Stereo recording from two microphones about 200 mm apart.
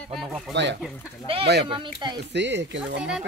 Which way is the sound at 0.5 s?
60° right (ahead or behind).